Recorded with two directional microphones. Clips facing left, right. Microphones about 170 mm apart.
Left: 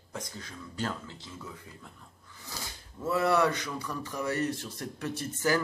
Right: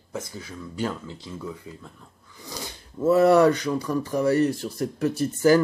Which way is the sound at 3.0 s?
40° right (ahead or behind).